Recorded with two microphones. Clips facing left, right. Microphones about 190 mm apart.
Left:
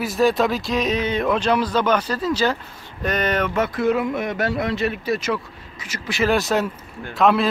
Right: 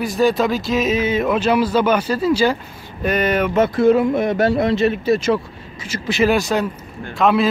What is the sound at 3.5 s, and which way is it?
Speech, 30° right (ahead or behind).